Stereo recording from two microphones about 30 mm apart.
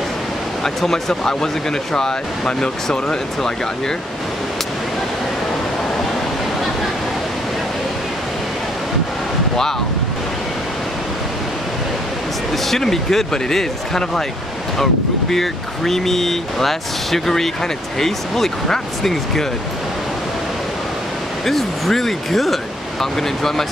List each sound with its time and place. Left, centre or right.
0.7 s speech: centre
2.0 s speech: left
12.6 s speech: centre
21.5 s speech: centre